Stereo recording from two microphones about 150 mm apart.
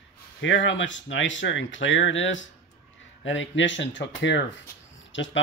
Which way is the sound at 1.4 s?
90° left.